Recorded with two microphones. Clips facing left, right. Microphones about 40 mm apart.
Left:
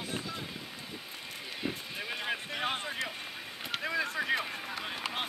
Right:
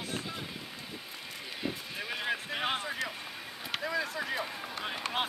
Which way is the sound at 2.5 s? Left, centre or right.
Centre.